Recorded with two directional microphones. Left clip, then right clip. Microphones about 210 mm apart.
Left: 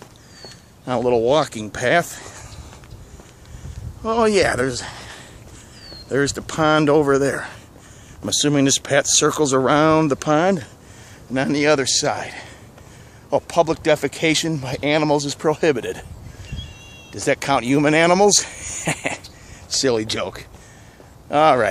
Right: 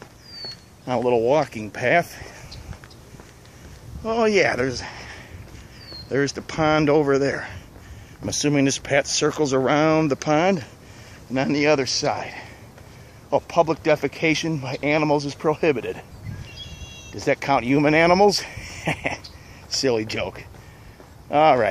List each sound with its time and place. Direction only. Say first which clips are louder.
0.4 s speech: right 6 dB; 10° left (ahead or behind)
4.0 s speech: left 2 dB; 10° left (ahead or behind)
17.1 s speech: left 2 dB; 5° left (ahead or behind)
18.6 s a sound: left 5 dB; 45° left (ahead or behind)
18.9 s speech: left 1 dB; 5° left (ahead or behind)